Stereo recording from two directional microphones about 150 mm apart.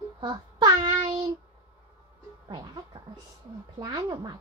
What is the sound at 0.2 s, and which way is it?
Child singing, 30° right (ahead or behind).